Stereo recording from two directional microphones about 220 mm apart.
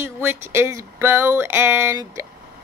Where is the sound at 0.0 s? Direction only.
10° right (ahead or behind).